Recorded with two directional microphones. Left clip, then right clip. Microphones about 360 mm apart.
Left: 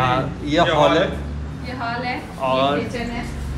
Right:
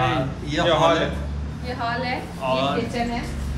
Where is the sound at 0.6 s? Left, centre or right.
Right.